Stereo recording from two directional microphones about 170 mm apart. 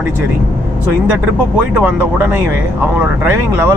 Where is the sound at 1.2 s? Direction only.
10° right (ahead or behind).